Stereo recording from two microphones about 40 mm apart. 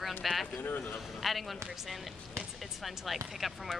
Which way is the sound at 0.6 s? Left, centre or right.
Left.